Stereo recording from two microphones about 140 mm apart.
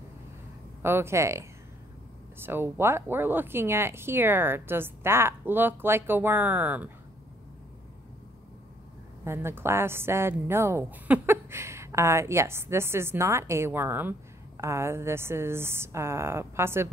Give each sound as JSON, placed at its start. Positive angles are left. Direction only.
{"t": 0.8, "sound": "a woman's voice", "side_deg": -15}
{"t": 9.2, "sound": "a woman's voice", "side_deg": -15}